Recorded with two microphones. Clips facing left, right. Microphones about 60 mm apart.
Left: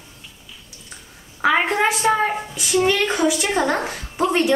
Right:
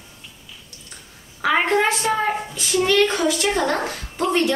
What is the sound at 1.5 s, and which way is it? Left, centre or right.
A woman's voice, centre.